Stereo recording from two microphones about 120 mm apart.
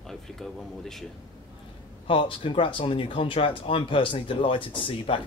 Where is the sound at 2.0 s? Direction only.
45° left (ahead or behind).